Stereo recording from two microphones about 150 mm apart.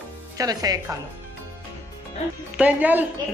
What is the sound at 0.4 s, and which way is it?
Speech, 25° right (ahead or behind).